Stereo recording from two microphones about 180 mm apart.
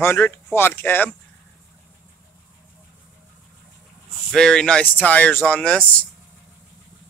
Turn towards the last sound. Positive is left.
turn(degrees=5)  # may be behind; listen again after turning